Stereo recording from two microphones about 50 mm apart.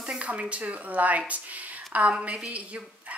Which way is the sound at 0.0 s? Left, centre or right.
Right.